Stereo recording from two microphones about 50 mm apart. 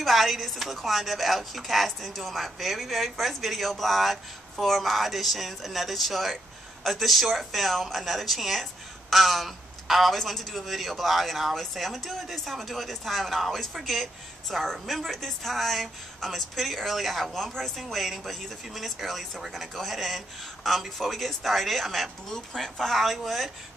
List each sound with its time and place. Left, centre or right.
0.0 s a woman's voice: centre